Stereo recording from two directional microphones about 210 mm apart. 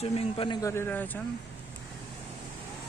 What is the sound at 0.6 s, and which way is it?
Speech, 10° left (ahead or behind).